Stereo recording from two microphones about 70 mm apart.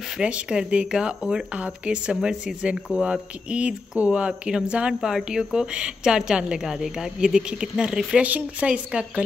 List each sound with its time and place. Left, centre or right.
0.2 s a woman's voice: centre